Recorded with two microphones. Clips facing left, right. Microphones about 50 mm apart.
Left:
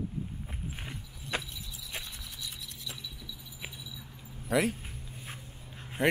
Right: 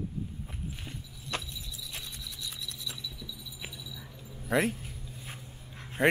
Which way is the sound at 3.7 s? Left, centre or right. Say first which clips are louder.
Right 1 dB; left.